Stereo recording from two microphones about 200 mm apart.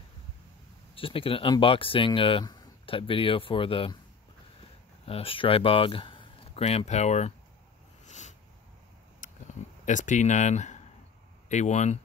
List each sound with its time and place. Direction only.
0.9 s speech: 25° left (ahead or behind)
8.0 s a sound: 35° left (ahead or behind)
9.8 s speech: 40° left (ahead or behind)